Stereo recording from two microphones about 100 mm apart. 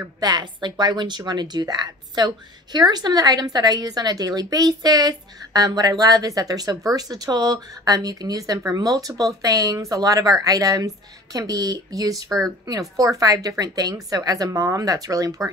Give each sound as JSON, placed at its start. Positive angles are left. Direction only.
{"t": 0.2, "sound": "a woman's voice", "side_deg": -45}